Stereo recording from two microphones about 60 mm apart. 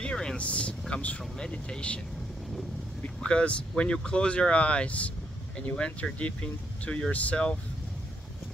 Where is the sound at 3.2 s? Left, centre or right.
Centre.